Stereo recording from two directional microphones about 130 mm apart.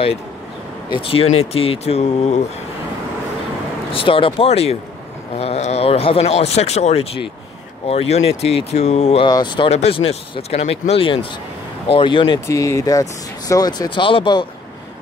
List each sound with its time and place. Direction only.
0.9 s speech: 50° left (ahead or behind)
3.9 s speech: 45° left (ahead or behind)
9.2 s speech: 35° left (ahead or behind)
9.7 s speech: 50° left (ahead or behind)
12.4 s speech: 25° left (ahead or behind); by 14.4 s 40° left (ahead or behind)